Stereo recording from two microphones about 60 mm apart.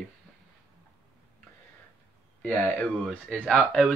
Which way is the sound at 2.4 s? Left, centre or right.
Left.